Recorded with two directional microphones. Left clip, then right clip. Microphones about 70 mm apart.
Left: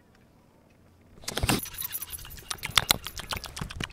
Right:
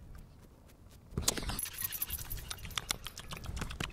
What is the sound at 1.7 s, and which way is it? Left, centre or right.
Keys jangling, left.